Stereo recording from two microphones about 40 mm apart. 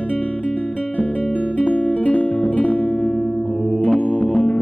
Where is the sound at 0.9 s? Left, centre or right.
Left.